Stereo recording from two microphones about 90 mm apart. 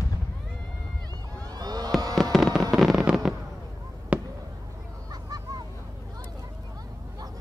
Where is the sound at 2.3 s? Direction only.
Centre (ahead or behind).